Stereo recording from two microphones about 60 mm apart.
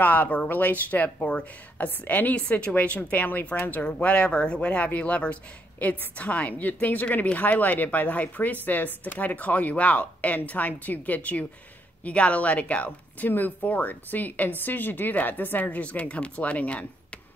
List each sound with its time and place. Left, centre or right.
0.0 s speech: left